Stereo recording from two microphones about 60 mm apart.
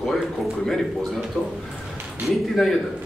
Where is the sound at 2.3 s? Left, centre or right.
Centre.